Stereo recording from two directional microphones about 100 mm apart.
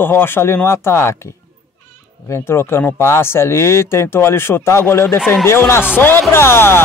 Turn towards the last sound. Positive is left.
turn(degrees=25)  # may be behind; listen again after turning